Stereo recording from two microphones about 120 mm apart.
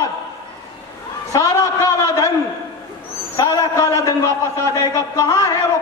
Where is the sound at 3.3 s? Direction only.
30° left (ahead or behind).